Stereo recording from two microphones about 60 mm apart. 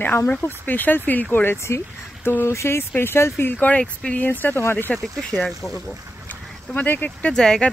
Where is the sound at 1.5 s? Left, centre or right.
Left.